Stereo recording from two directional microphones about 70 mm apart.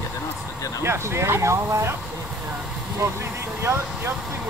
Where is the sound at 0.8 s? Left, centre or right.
Right.